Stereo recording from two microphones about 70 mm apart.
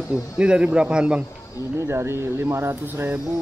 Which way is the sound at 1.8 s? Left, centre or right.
Right.